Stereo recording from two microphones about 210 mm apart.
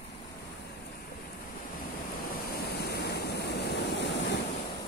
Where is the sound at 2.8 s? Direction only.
50° left (ahead or behind).